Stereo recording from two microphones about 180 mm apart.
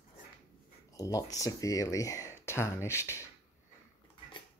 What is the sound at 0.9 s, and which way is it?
Speech, 20° left (ahead or behind).